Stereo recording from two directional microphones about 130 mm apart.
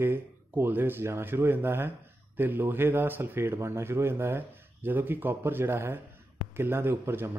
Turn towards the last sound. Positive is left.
turn(degrees=-15)  # may be behind; listen again after turning